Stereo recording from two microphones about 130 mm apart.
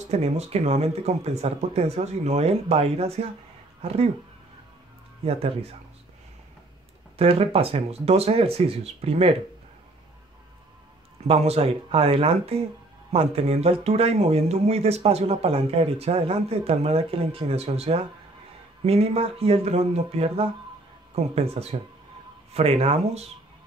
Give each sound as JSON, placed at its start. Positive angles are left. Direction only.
{"t": 0.1, "sound": "speech", "side_deg": -55}
{"t": 5.2, "sound": "speech", "side_deg": -50}
{"t": 7.2, "sound": "speech", "side_deg": -45}
{"t": 11.2, "sound": "speech", "side_deg": -50}